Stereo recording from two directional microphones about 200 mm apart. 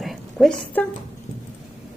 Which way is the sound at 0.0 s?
Centre (ahead or behind).